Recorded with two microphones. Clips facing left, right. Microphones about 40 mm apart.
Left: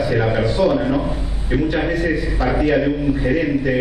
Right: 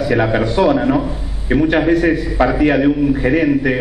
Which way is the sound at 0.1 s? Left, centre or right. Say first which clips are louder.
Right 3 dB; right.